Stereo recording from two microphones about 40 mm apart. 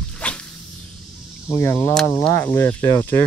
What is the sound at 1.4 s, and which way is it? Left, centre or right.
Speech, left.